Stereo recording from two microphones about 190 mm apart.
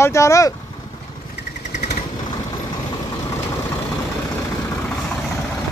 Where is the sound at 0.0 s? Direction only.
15° left (ahead or behind).